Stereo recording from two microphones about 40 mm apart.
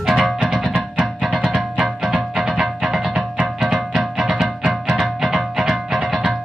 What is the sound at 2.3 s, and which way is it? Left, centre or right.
Music, centre.